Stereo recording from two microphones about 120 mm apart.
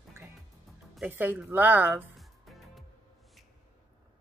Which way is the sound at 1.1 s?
15° right (ahead or behind).